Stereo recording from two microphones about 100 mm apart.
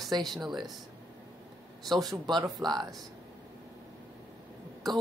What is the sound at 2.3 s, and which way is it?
Speech, 45° right (ahead or behind).